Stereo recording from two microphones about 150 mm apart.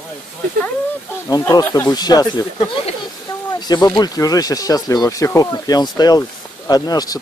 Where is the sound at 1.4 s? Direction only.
20° left (ahead or behind).